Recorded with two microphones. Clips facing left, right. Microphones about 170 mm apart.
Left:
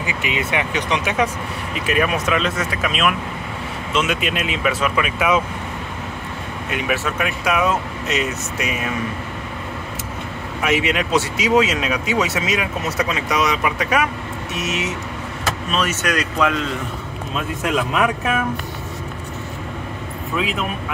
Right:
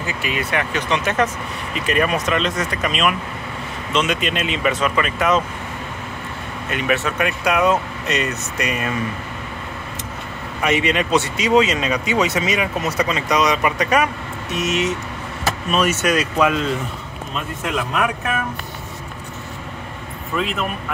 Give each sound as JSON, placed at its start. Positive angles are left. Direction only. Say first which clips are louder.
{"t": 0.0, "sound": "speech", "louder": "left 1 dB", "side_deg": 20}
{"t": 6.7, "sound": "speech", "louder": "right 2 dB", "side_deg": 5}
{"t": 10.6, "sound": "speech", "louder": "right 1 dB", "side_deg": 5}
{"t": 15.7, "sound": "speech", "louder": "right 4 dB", "side_deg": -10}
{"t": 20.4, "sound": "speech", "louder": "even", "side_deg": 0}